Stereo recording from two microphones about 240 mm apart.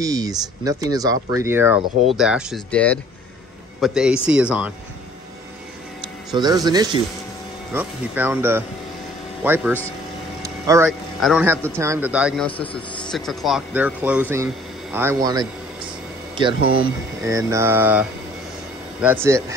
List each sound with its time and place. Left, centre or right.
0.0 s a man's voice: centre
6.3 s speech: centre
10.4 s vehicle: centre
10.9 s a man's voice: centre
17.2 s speech: centre